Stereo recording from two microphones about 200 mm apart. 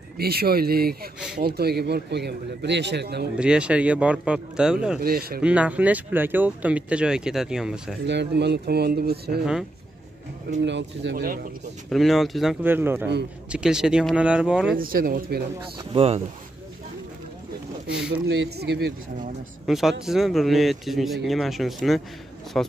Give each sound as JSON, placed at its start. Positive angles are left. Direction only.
{"t": 0.2, "sound": "a man's voice", "side_deg": -50}
{"t": 3.3, "sound": "speech", "side_deg": -5}
{"t": 5.0, "sound": "speech", "side_deg": -50}
{"t": 5.4, "sound": "speech", "side_deg": -5}
{"t": 8.0, "sound": "speech", "side_deg": -60}
{"t": 9.4, "sound": "speech", "side_deg": -5}
{"t": 10.6, "sound": "a man's voice", "side_deg": -65}
{"t": 11.1, "sound": "speech", "side_deg": -45}
{"t": 11.9, "sound": "speech", "side_deg": 0}
{"t": 14.8, "sound": "speech", "side_deg": -45}
{"t": 15.6, "sound": "speech", "side_deg": -30}
{"t": 18.2, "sound": "a man's voice", "side_deg": -55}
{"t": 19.6, "sound": "speech", "side_deg": 0}